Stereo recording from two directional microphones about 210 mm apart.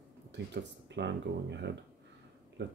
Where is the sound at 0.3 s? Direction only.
55° right (ahead or behind).